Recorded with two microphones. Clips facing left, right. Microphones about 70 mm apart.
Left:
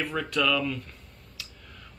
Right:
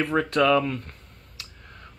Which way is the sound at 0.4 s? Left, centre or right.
Right.